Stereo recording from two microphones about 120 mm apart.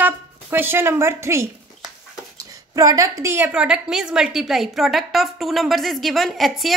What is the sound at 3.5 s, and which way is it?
A woman's voice, 5° right (ahead or behind).